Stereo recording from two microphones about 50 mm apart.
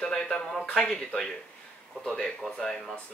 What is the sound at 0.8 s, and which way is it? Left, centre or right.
Speech, left.